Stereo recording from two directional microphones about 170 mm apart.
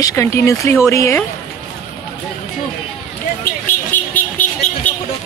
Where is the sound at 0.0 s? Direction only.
15° left (ahead or behind).